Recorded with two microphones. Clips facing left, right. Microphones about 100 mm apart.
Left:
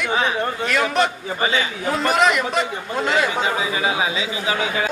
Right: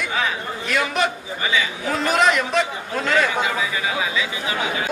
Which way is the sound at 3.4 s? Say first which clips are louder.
Left 2 dB; 25° left (ahead or behind).